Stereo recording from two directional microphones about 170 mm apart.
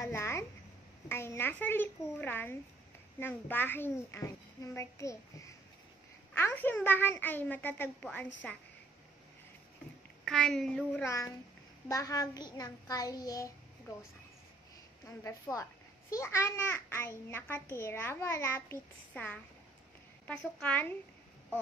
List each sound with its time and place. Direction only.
0.0 s a sound: 15° left (ahead or behind)
1.0 s a child's voice: 15° left (ahead or behind)
10.2 s a child's voice: 5° left (ahead or behind); by 13.5 s 20° left (ahead or behind)
15.0 s a child's voice: 15° left (ahead or behind)